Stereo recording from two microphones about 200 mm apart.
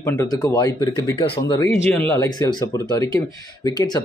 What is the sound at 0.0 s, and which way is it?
Speech, 15° left (ahead or behind).